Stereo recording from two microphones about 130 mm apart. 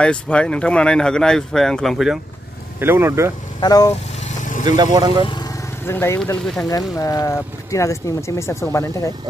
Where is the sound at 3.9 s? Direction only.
70° left (ahead or behind).